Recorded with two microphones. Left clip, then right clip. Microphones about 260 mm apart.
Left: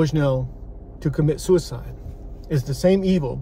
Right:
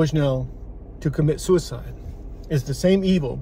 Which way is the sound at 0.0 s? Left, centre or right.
Centre.